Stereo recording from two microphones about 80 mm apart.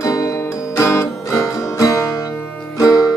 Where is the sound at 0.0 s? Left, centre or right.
Left.